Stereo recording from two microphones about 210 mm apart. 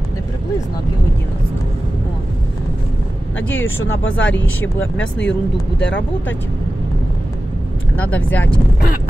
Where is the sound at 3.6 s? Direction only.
10° left (ahead or behind).